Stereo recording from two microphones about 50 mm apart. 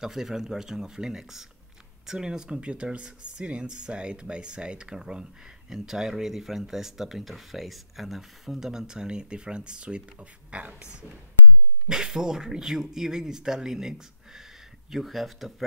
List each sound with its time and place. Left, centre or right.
0.0 s speech: centre